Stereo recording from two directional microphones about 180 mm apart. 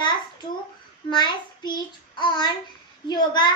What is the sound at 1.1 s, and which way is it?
A child's voice, 25° left (ahead or behind).